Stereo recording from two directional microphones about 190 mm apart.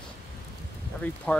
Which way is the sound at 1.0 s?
10° left (ahead or behind).